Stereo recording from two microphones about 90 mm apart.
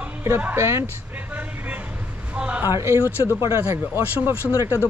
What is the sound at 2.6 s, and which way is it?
Speech, 30° right (ahead or behind).